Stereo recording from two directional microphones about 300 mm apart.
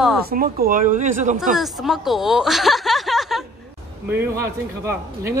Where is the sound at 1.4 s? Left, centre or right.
Centre.